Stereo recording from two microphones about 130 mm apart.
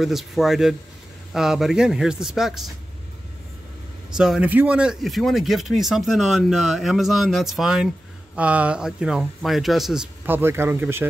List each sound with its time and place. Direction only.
0.0 s speech: centre (ahead or behind)
4.2 s speech: 5° right (ahead or behind)
10.2 s speech: 15° right (ahead or behind)